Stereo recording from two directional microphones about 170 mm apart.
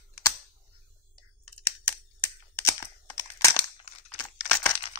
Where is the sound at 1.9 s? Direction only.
10° left (ahead or behind).